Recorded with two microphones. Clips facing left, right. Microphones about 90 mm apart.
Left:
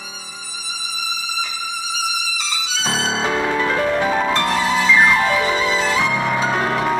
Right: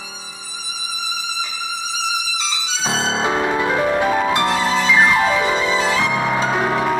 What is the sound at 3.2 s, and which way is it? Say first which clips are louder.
Music: right 1 dB; 15° right (ahead or behind).